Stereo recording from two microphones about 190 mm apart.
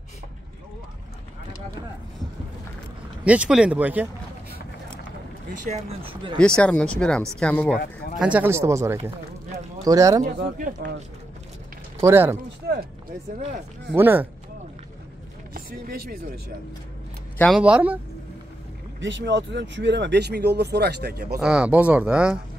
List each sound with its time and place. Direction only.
3.3 s speech: 5° right (ahead or behind)
5.5 s speech: 40° right (ahead or behind)
6.3 s speech: 5° left (ahead or behind)
8.2 s speech: 5° right (ahead or behind)
10.2 s speech: 50° right (ahead or behind)
12.0 s speech: 15° right (ahead or behind)
13.9 s speech: 10° right (ahead or behind)
15.5 s speech: 50° right (ahead or behind)
17.6 s speech: 5° right (ahead or behind)
18.9 s speech: 75° right (ahead or behind); by 21.4 s 55° right (ahead or behind)
21.4 s speech: 5° right (ahead or behind)